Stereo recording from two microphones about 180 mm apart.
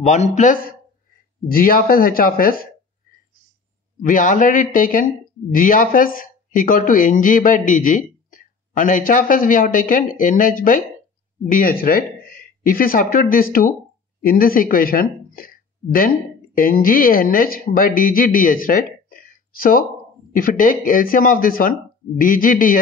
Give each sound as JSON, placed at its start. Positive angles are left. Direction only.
{"t": 0.0, "sound": "speech", "side_deg": 40}
{"t": 4.0, "sound": "speech", "side_deg": 45}